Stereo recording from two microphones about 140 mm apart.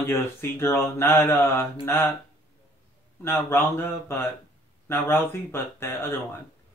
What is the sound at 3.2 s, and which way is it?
Speech, 15° left (ahead or behind).